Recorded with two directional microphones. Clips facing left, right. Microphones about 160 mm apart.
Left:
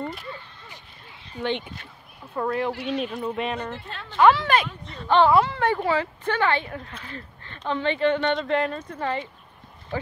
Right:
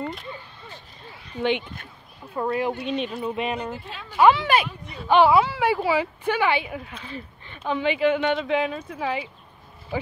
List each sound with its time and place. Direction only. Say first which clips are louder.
2.3 s speech: right 1 dB; 15° right (ahead or behind)
2.7 s speech: right 1 dB; 75° left (ahead or behind)
3.0 s speech: even; 5° right (ahead or behind)